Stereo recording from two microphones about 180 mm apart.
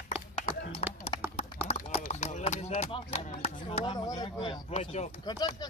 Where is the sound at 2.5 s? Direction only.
35° left (ahead or behind).